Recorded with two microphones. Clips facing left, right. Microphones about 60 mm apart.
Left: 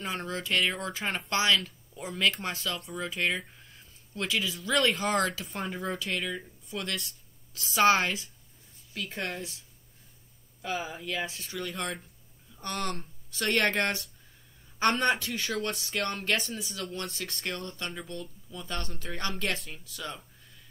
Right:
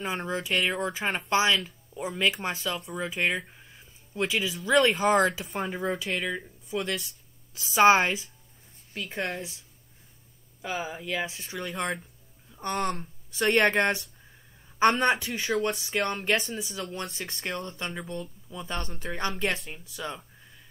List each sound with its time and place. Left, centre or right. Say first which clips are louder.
0.0 s speech: right 3 dB; centre
5.0 s speech: right 5 dB; right
5.4 s speech: right 4 dB; centre
9.1 s speech: right 4 dB; right
10.6 s speech: right 1 dB; centre
17.0 s speech: right 1 dB; centre
17.3 s speech: right 2 dB; right